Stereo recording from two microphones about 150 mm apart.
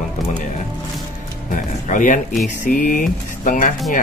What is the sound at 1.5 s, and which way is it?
Speech, 60° left (ahead or behind).